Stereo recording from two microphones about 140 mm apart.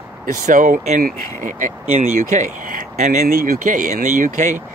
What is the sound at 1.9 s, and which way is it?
Speech, 55° right (ahead or behind).